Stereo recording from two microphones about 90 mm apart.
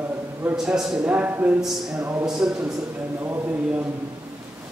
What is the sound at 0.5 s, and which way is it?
Speech, 5° right (ahead or behind).